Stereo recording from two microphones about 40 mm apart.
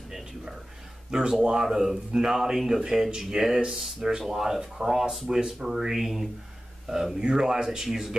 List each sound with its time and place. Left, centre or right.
1.4 s speech: centre
2.5 s speech: centre
7.2 s speech: centre